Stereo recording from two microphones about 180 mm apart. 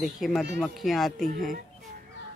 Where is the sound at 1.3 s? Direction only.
50° right (ahead or behind).